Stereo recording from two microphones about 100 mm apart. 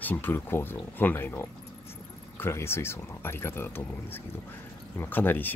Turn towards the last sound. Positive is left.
turn(degrees=20)  # may be behind; listen again after turning